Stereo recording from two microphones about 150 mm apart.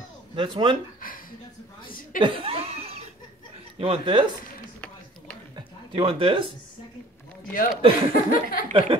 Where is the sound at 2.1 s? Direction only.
35° right (ahead or behind).